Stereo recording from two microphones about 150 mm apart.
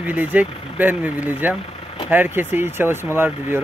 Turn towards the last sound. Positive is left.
turn(degrees=-15)  # may be behind; listen again after turning